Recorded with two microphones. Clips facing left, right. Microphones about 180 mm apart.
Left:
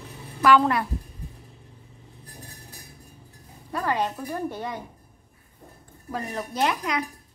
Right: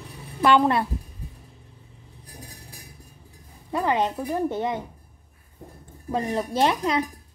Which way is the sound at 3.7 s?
20° right (ahead or behind).